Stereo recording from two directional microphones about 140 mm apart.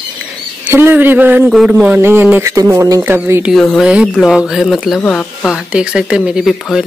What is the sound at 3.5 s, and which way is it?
Speech, centre (ahead or behind).